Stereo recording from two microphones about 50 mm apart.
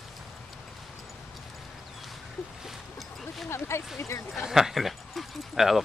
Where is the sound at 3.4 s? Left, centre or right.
Left.